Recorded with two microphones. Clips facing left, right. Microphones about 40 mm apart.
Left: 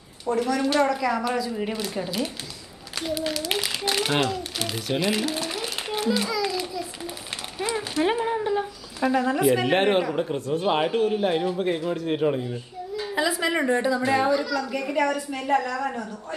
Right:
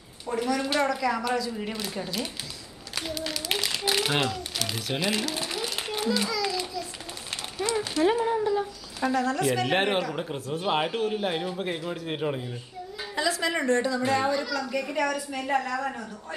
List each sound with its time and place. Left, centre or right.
0.3 s a man's voice: centre
5.5 s a sound: centre
8.0 s speech: left
9.0 s a woman's voice: centre
13.1 s a woman's voice: centre